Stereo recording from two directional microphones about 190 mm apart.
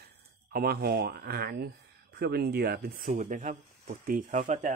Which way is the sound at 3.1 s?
40° right (ahead or behind).